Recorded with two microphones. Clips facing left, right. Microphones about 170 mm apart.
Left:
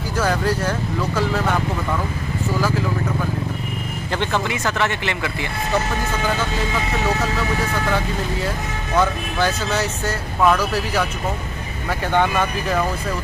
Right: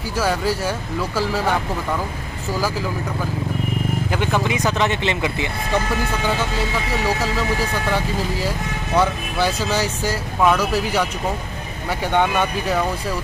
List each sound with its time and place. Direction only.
0.2 s speech: 5° right (ahead or behind)
4.1 s speech: 10° right (ahead or behind)
8.9 s speech: 10° right (ahead or behind)
12.2 s speech: centre (ahead or behind)